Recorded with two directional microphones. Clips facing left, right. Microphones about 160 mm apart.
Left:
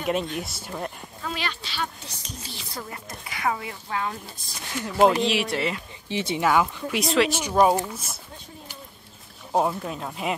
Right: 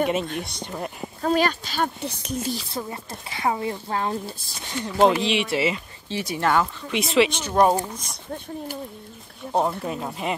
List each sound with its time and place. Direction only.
0.4 s speech: 5° left (ahead or behind)
1.2 s speech: 45° right (ahead or behind)
2.7 s a woman's voice: 25° right (ahead or behind)
4.8 s speech: 5° left (ahead or behind)
6.0 s speech: 20° left (ahead or behind)
6.4 s speech: 5° left (ahead or behind)
9.5 s speech: 5° left (ahead or behind)